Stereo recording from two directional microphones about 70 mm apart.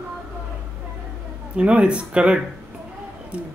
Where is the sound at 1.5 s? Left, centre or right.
Centre.